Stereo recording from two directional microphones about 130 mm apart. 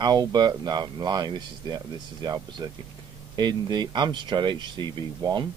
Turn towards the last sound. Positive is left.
turn(degrees=-30)  # may be behind; listen again after turning